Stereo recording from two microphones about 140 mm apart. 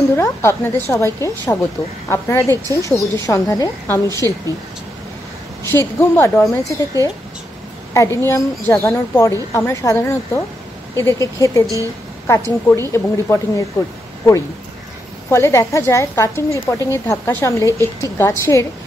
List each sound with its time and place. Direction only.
0.1 s a woman's voice: 20° left (ahead or behind)
5.7 s a woman's voice: 15° left (ahead or behind)
12.6 s a woman's voice: 20° left (ahead or behind)
15.2 s a woman's voice: 20° left (ahead or behind)